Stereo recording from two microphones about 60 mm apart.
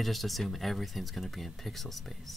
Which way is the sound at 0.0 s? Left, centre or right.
Centre.